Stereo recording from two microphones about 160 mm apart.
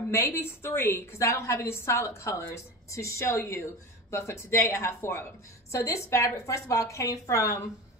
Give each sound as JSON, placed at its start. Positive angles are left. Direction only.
{"t": 0.1, "sound": "a woman's voice", "side_deg": 15}